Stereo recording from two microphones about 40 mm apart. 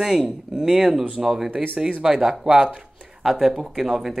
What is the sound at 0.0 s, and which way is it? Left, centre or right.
Speech, centre.